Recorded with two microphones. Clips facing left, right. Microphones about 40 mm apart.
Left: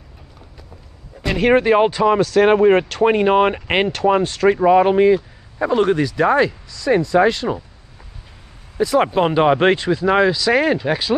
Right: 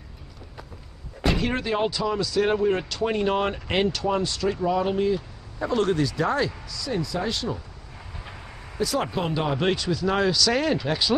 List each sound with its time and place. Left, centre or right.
1.4 s speech: left
5.7 s speech: left
6.1 s speech: left
8.7 s speech: left
9.0 s speech: left
9.8 s speech: left